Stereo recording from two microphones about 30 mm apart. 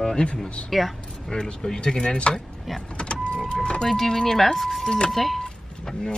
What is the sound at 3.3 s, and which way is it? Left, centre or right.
Speech, left.